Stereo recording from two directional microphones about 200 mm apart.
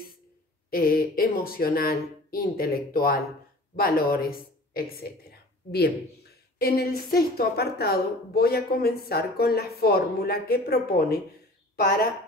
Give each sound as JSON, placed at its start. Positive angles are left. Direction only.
{"t": 0.7, "sound": "speech", "side_deg": 50}